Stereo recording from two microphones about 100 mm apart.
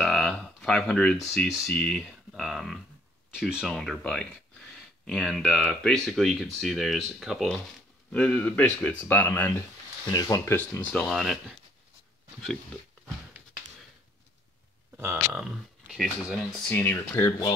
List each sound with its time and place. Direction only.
0.0 s speech: centre (ahead or behind)
3.7 s speech: 5° left (ahead or behind); by 9.6 s 25° left (ahead or behind)
10.1 s speech: 35° left (ahead or behind)
10.8 s speech: 10° left (ahead or behind)
11.1 s speech: centre (ahead or behind)
15.3 s speech: 5° right (ahead or behind)
16.6 s speech: 20° left (ahead or behind)